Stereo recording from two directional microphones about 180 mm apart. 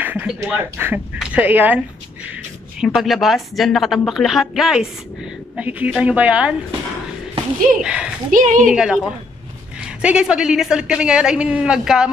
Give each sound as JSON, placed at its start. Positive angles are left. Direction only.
{"t": 0.0, "sound": "speech", "side_deg": -10}
{"t": 2.8, "sound": "a woman's voice", "side_deg": 0}
{"t": 7.8, "sound": "a woman's voice", "side_deg": -5}
{"t": 8.3, "sound": "speech", "side_deg": -45}
{"t": 8.6, "sound": "a woman's voice", "side_deg": -5}